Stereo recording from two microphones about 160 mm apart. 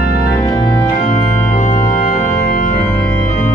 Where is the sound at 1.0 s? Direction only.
55° left (ahead or behind).